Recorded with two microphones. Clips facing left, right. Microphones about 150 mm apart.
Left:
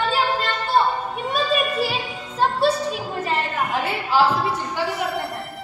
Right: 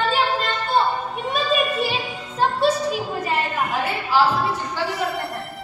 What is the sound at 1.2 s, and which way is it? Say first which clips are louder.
Music: even; centre (ahead or behind).